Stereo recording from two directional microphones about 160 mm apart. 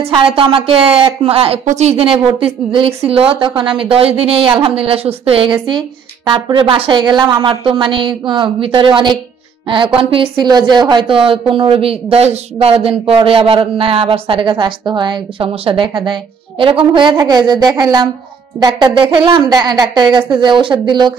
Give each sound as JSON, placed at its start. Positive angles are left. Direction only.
{"t": 0.0, "sound": "a woman's voice", "side_deg": -35}
{"t": 10.1, "sound": "a woman's voice", "side_deg": -30}